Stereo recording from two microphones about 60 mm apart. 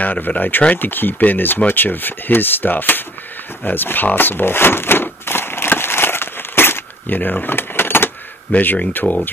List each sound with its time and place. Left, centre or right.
0.0 s speech: left
3.6 s a sound: left
8.5 s speech: left